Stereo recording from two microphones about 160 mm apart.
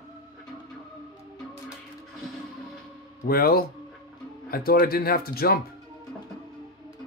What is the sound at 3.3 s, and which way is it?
Speech, 70° left (ahead or behind).